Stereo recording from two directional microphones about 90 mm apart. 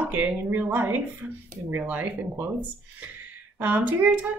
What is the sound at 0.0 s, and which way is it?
A woman's voice, 15° right (ahead or behind).